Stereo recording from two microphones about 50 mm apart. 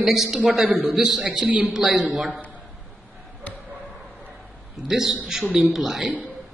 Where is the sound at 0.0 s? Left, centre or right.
Centre.